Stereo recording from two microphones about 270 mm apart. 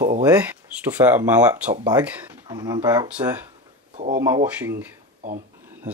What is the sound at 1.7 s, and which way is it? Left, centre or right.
Speech, centre.